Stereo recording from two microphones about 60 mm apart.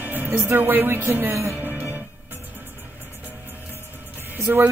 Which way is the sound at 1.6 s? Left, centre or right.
Right.